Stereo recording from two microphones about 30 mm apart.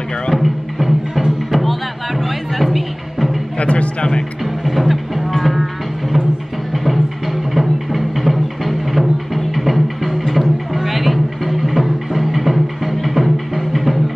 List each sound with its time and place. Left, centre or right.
0.3 s music: centre
3.5 s speech: left
4.6 s music: centre